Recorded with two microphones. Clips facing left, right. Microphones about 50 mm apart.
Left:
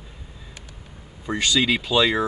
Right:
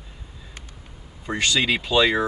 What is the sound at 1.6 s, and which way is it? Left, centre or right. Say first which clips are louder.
Speech: right 1 dB; centre.